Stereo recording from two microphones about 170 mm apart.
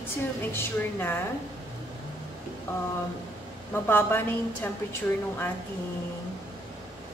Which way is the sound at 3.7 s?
15° left (ahead or behind).